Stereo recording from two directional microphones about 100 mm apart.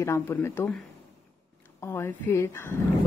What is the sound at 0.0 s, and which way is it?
Speech, 30° left (ahead or behind).